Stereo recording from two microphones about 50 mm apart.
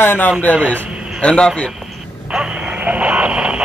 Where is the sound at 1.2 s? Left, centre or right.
Left.